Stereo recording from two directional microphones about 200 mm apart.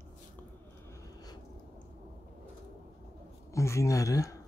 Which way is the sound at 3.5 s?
15° left (ahead or behind).